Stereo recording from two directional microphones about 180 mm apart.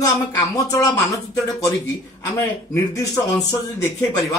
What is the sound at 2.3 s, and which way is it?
A man's voice, 15° left (ahead or behind).